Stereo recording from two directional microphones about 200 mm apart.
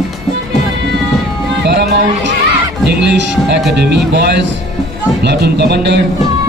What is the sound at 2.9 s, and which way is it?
Speech, 60° right (ahead or behind).